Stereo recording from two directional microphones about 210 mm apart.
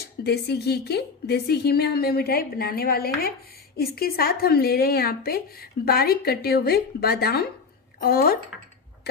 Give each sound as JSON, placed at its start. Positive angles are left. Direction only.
{"t": 0.2, "sound": "a woman's voice", "side_deg": 50}